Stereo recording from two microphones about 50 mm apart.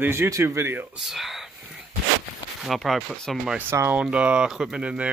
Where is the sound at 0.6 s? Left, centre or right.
Right.